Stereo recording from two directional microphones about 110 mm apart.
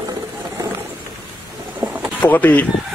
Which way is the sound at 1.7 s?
10° right (ahead or behind).